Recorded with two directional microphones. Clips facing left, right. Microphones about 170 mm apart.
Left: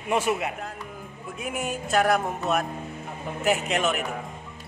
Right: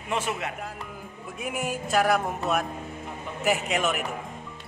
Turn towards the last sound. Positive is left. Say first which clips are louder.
# left 1 dB
turn(degrees=0)  # may be behind; listen again after turning